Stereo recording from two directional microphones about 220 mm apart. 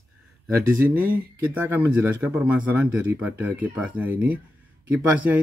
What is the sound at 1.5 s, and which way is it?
Speech, 10° right (ahead or behind).